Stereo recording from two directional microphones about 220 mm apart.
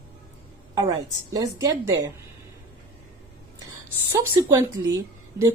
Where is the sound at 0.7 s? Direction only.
15° right (ahead or behind).